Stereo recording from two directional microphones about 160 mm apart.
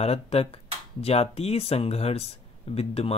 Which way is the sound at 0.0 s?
40° left (ahead or behind).